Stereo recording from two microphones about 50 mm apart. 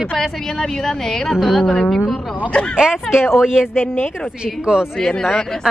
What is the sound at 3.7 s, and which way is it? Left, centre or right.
Speech, left.